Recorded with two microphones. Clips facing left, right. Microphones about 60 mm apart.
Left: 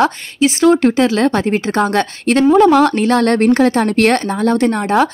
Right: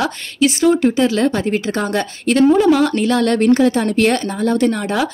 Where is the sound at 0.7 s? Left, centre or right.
Left.